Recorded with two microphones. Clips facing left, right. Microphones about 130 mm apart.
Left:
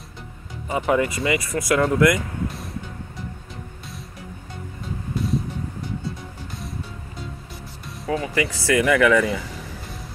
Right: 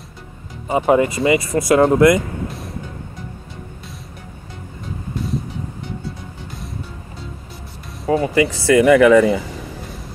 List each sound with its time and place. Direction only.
0.7 s speech: 25° right (ahead or behind)
2.4 s music: centre (ahead or behind)
8.1 s speech: 30° right (ahead or behind)